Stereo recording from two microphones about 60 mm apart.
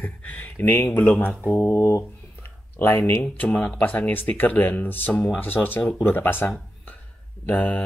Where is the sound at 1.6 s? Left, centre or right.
Left.